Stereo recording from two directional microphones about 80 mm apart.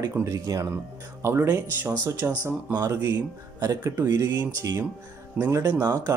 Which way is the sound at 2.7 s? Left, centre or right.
Right.